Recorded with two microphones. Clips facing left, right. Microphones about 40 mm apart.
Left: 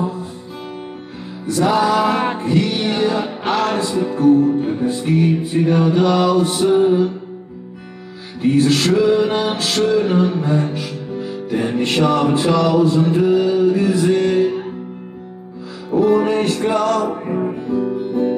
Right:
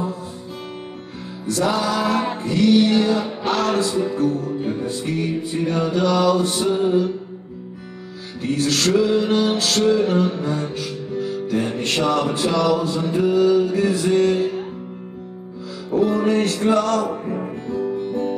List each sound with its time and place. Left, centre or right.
1.5 s music: left
4.6 s music: centre
4.8 s music: left
8.4 s music: left
16.1 s music: centre
17.4 s music: centre